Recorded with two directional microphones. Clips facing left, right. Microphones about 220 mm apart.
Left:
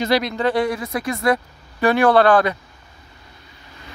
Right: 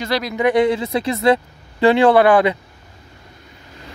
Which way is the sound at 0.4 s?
20° right (ahead or behind).